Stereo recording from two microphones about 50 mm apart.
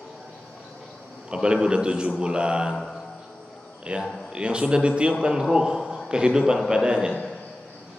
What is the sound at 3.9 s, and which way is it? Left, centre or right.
A man's voice, right.